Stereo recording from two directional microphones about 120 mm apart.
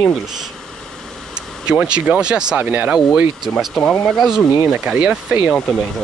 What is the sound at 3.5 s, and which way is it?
Speech, 5° left (ahead or behind).